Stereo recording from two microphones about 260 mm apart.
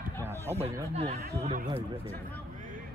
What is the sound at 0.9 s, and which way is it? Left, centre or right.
Speech, right.